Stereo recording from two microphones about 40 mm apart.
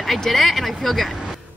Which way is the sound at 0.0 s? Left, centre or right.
Centre.